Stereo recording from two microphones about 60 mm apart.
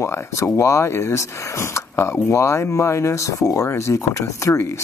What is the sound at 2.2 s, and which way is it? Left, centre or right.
Speech, left.